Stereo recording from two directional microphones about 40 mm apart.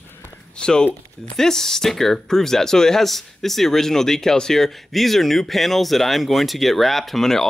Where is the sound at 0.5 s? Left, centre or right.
Left.